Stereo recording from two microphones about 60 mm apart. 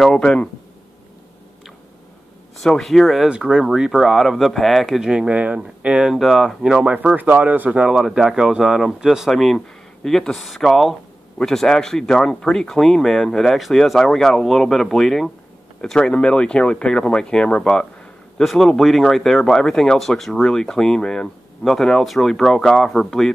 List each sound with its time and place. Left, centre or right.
0.1 s speech: centre
2.6 s speech: centre
3.3 s speech: centre
5.3 s speech: right
6.1 s speech: centre
7.2 s speech: right
8.0 s speech: centre
10.0 s speech: centre
18.4 s speech: centre